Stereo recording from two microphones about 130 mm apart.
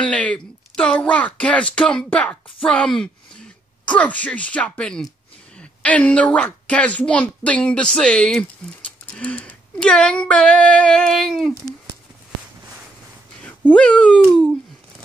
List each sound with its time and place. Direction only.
0.0 s speech: 10° left (ahead or behind)
13.4 s speech: 10° left (ahead or behind)